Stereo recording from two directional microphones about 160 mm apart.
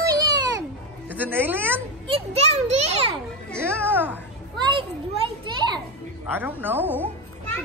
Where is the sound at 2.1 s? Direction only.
40° right (ahead or behind).